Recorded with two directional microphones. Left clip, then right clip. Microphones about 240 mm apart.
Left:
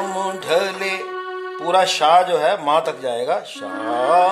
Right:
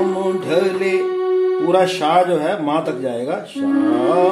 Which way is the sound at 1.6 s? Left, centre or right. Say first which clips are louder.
Right 1 dB; left.